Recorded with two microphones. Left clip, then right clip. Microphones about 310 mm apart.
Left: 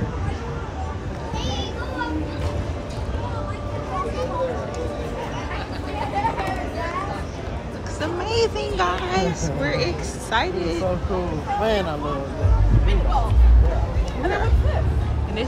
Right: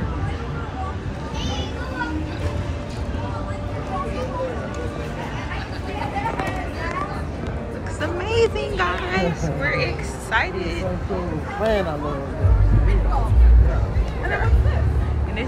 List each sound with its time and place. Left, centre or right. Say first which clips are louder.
8.0 s a sound: right 2 dB; centre
10.3 s speech: even; centre
11.6 s speech: right 2 dB; centre